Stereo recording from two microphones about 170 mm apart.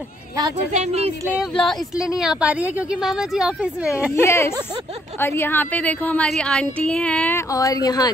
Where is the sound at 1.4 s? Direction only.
5° left (ahead or behind).